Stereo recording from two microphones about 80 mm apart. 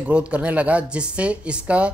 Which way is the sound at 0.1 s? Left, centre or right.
Centre.